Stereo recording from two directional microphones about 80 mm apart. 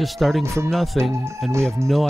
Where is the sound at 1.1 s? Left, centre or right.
Right.